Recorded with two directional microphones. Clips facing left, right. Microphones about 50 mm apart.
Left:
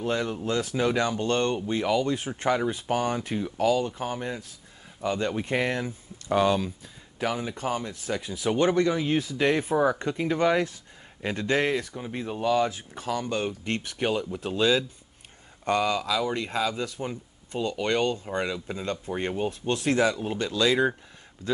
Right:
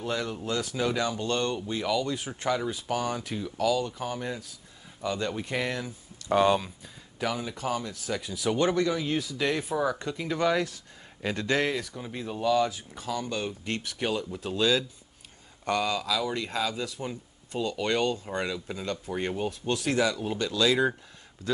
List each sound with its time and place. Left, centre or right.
0.0 s speech: left
6.3 s speech: centre
7.2 s speech: left
16.7 s speech: left